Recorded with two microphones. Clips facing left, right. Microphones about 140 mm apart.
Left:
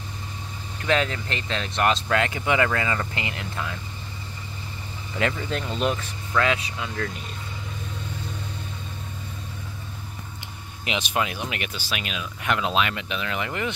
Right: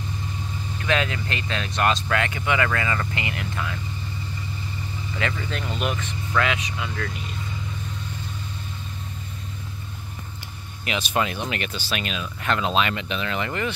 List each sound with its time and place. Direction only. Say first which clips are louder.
0.8 s speech: left 1 dB; 30° left (ahead or behind)
5.8 s speech: left 3 dB; 30° left (ahead or behind)
10.9 s speech: right 1 dB; 15° left (ahead or behind)